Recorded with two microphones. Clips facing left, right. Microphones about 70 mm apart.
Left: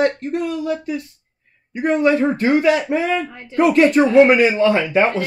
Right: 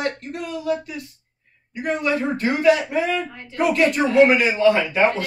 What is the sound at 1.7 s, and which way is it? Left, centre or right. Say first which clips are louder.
A man's voice: left 6 dB; left.